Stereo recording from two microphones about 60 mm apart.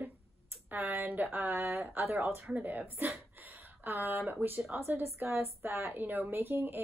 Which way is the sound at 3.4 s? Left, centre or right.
Right.